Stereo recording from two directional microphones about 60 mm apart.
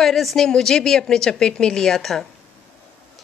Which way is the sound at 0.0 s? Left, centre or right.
Centre.